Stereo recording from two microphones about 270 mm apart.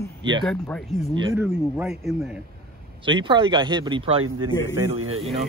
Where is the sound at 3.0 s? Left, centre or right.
Centre.